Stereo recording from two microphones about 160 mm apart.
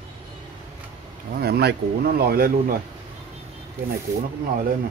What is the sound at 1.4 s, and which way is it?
Speech, 85° right.